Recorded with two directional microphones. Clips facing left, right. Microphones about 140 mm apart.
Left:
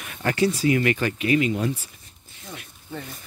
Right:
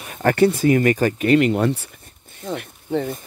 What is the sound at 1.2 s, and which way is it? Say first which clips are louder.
Speech: right 5 dB; 65° right (ahead or behind).